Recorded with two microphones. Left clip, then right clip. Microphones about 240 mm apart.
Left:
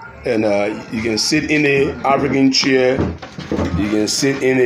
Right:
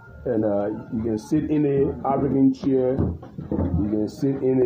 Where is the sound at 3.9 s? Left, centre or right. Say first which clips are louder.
Left 10 dB; left.